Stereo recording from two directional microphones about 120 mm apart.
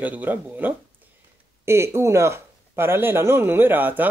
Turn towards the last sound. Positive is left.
turn(degrees=-15)  # may be behind; listen again after turning